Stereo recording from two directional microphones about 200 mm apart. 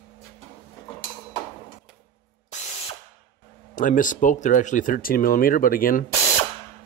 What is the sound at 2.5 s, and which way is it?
Ratchet, 35° left (ahead or behind).